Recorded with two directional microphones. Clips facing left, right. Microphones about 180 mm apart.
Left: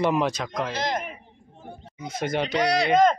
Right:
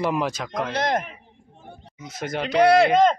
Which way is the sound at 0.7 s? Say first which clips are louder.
Right 7 dB; 60° right (ahead or behind).